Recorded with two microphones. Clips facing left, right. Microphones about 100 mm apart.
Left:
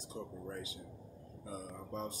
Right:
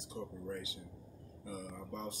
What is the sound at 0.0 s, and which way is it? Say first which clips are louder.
Speech: right 1 dB; 40° left (ahead or behind).